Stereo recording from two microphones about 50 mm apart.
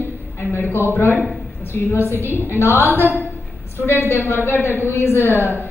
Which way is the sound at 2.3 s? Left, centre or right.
Left.